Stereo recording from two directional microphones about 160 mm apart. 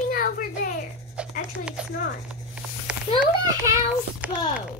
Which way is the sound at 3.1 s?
25° right (ahead or behind).